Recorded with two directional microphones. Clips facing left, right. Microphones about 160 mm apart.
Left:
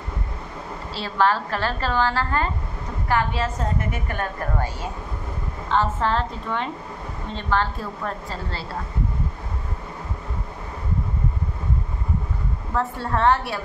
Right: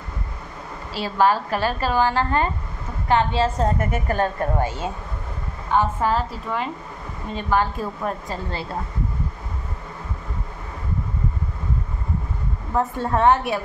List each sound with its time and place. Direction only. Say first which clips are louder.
0.9 s a woman's voice: right 2 dB; 10° right (ahead or behind); by 4.3 s 35° right (ahead or behind)
4.4 s a woman's voice: right 4 dB; 20° right (ahead or behind)
12.7 s a woman's voice: right 3 dB; 15° right (ahead or behind)